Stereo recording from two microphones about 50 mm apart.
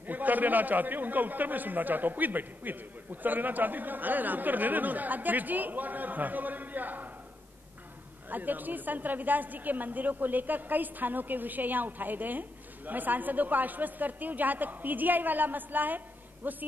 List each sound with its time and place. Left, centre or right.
0.0 s a man's voice: right
8.3 s a man's voice: right